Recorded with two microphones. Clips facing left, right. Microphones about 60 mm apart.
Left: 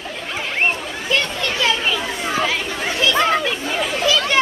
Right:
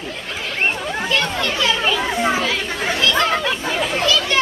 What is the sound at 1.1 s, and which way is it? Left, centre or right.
Children playing, centre.